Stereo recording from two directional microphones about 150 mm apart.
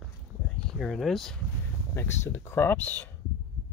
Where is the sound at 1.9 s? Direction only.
15° left (ahead or behind).